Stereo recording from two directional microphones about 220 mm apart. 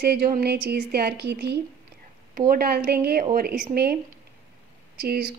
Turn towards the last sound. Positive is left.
turn(degrees=-45)  # may be behind; listen again after turning